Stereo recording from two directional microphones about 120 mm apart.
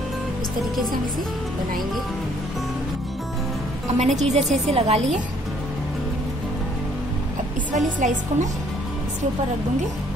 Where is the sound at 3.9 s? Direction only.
75° right (ahead or behind); by 5.0 s 60° right (ahead or behind).